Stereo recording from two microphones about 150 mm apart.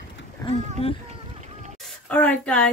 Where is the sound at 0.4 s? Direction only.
25° left (ahead or behind).